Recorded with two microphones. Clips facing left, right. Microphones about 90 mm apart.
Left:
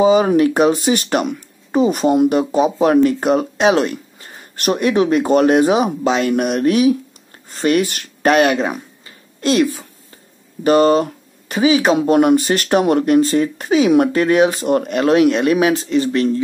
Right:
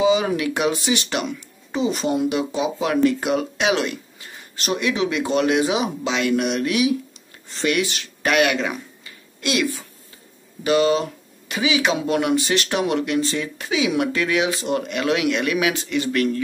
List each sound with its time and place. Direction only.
0.0 s speech: 45° left (ahead or behind)